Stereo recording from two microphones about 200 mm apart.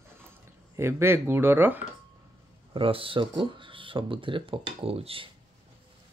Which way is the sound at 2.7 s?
25° right (ahead or behind).